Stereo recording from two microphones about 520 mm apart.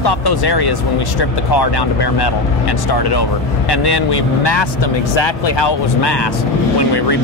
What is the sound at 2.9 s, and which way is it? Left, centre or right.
Speech, left.